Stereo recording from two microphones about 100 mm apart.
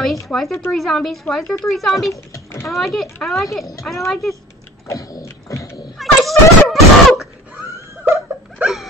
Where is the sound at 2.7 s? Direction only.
Centre (ahead or behind).